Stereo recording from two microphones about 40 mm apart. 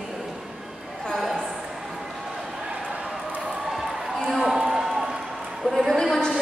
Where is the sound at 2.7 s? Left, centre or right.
Right.